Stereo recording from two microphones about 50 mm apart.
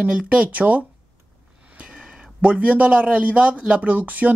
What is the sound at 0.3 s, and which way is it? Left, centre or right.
Speech, right.